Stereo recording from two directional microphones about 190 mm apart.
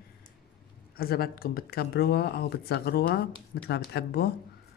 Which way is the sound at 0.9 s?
55° left (ahead or behind).